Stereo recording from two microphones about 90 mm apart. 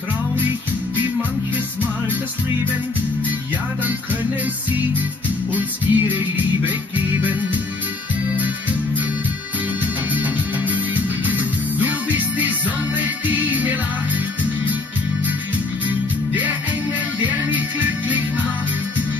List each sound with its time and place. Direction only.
5.5 s music: 20° right (ahead or behind)
10.1 s music: 20° right (ahead or behind)
17.5 s music: 20° right (ahead or behind)